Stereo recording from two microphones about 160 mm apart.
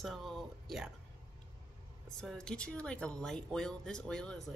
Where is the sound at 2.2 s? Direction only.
5° left (ahead or behind).